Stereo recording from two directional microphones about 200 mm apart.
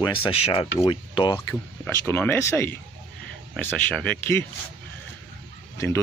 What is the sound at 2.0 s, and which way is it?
Speech, 10° left (ahead or behind).